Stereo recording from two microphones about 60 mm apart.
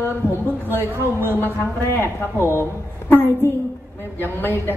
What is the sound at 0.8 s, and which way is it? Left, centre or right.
Speech, right.